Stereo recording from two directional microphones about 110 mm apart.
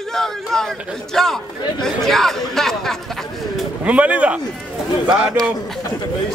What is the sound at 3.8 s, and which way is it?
Speech, 15° right (ahead or behind).